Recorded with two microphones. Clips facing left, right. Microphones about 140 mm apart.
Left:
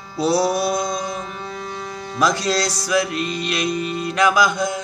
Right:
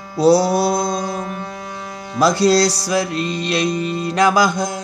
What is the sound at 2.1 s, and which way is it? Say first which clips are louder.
Music: right 6 dB; 35° right (ahead or behind).